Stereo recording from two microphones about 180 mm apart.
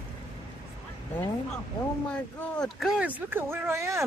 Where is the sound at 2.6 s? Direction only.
Centre (ahead or behind).